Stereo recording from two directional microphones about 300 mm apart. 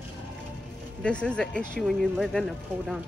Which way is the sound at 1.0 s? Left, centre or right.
Centre.